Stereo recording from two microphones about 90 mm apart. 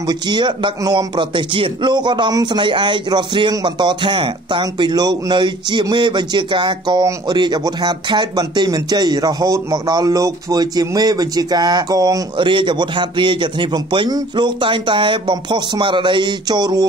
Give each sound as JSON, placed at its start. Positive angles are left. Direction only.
{"t": 0.0, "sound": "speech", "side_deg": -55}
{"t": 12.4, "sound": "speech", "side_deg": -65}